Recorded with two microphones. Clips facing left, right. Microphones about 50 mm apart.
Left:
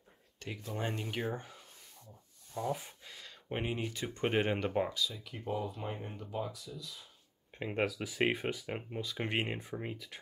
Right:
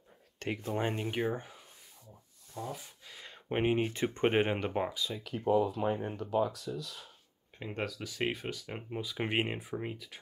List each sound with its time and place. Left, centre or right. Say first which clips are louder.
0.4 s speech: right 7 dB; right
0.7 s speech: right 3 dB; right
2.6 s speech: left 4 dB; centre
3.2 s speech: right 6 dB; right
5.2 s speech: right 9 dB; right
7.5 s speech: left 4 dB; centre
8.9 s speech: right 4 dB; centre